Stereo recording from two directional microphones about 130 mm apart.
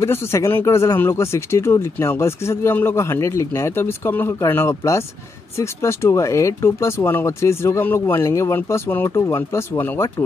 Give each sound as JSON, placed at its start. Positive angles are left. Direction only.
{"t": 0.0, "sound": "speech", "side_deg": 20}